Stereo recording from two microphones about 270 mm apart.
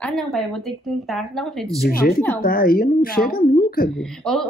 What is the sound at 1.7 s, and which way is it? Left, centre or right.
Speech, left.